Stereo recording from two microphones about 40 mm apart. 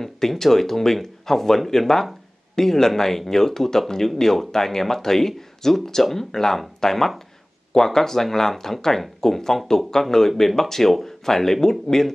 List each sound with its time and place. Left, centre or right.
0.0 s speech: centre